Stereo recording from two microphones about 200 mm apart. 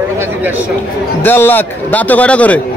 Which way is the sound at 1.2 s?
10° left (ahead or behind).